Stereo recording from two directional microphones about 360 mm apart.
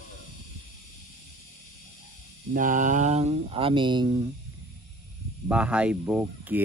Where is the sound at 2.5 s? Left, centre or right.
Right.